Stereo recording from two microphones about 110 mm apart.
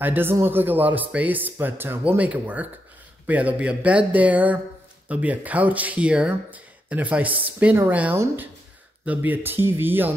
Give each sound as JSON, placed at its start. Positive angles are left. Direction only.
{"t": 0.0, "sound": "speech", "side_deg": -20}